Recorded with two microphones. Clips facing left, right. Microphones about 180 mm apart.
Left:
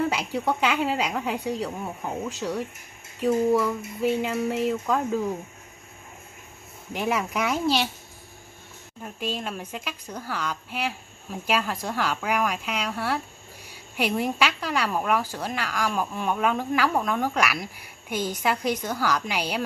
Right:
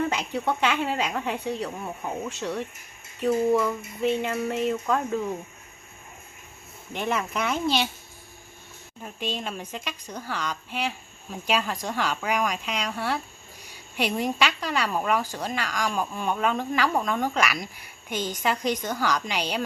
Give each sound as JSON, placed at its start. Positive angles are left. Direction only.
{"t": 0.0, "sound": "speech", "side_deg": 10}
{"t": 6.9, "sound": "speech", "side_deg": 5}
{"t": 9.0, "sound": "speech", "side_deg": 5}